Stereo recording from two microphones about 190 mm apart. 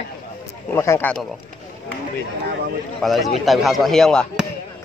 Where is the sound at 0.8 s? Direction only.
15° left (ahead or behind).